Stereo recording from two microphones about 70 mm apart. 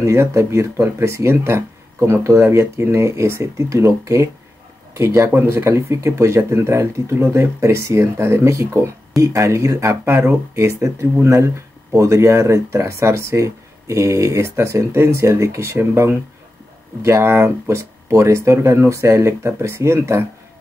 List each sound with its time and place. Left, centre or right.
0.0 s speech: right